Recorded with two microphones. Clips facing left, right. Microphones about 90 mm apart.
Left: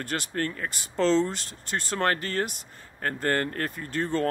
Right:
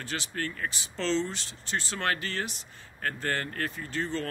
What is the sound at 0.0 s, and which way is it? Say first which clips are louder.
Speech: left 5 dB; 50° left (ahead or behind).